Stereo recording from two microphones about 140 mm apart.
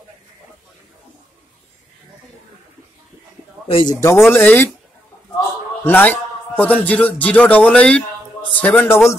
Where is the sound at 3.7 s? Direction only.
35° left (ahead or behind).